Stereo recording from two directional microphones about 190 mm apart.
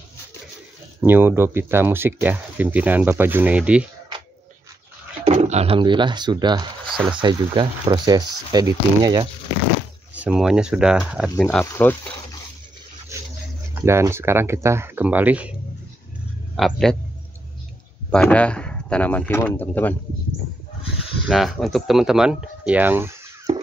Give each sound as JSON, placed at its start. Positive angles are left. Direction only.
{"t": 1.0, "sound": "speech", "side_deg": -10}
{"t": 5.2, "sound": "speech", "side_deg": -35}
{"t": 10.1, "sound": "speech", "side_deg": -5}
{"t": 11.4, "sound": "speech", "side_deg": 10}
{"t": 13.1, "sound": "a sound", "side_deg": -15}
{"t": 13.7, "sound": "speech", "side_deg": -15}
{"t": 16.5, "sound": "speech", "side_deg": 0}
{"t": 18.1, "sound": "speech", "side_deg": 5}
{"t": 21.3, "sound": "speech", "side_deg": 0}